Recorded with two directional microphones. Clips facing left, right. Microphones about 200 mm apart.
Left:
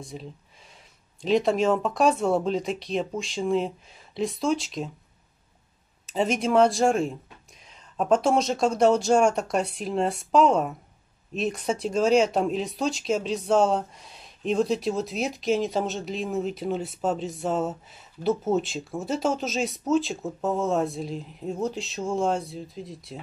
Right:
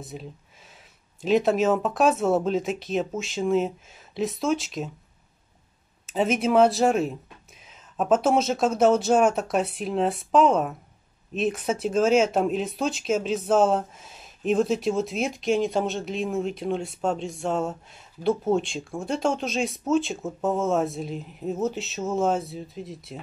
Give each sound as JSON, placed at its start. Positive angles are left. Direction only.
{"t": 0.0, "sound": "speech", "side_deg": -5}
{"t": 6.0, "sound": "speech", "side_deg": 0}